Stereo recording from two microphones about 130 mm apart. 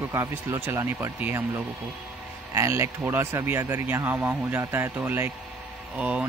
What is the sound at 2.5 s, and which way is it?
Speech, 20° right (ahead or behind).